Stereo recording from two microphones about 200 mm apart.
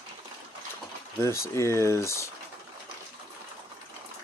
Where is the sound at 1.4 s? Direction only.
15° left (ahead or behind).